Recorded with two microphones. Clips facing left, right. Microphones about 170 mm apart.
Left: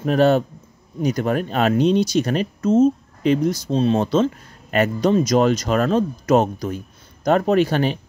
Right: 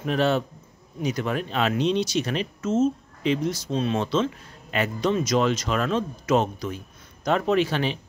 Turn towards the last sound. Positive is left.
turn(degrees=45)  # may be behind; listen again after turning